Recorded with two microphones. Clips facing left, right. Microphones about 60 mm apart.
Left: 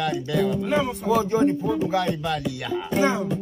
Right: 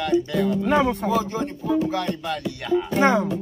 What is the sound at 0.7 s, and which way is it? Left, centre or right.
Speech, right.